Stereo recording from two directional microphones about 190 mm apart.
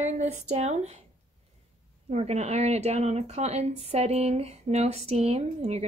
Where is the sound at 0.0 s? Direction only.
40° right (ahead or behind).